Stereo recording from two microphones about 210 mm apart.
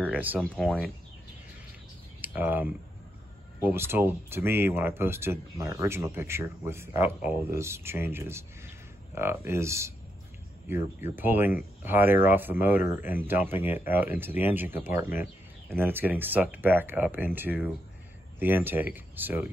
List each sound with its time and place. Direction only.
0.0 s a sound: 10° right (ahead or behind)
0.4 s speech: centre (ahead or behind)
2.2 s speech: 10° right (ahead or behind)
11.0 s speech: 10° right (ahead or behind)